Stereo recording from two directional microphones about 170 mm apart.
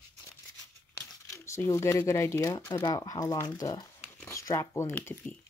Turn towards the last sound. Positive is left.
turn(degrees=10)  # may be behind; listen again after turning